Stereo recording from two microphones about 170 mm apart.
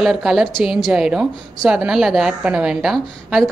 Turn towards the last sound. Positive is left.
turn(degrees=0)  # may be behind; listen again after turning